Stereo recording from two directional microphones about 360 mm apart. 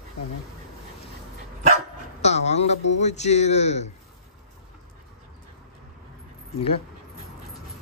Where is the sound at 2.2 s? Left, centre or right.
Centre.